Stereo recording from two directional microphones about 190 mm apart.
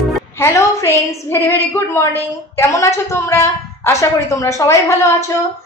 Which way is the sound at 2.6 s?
15° left (ahead or behind).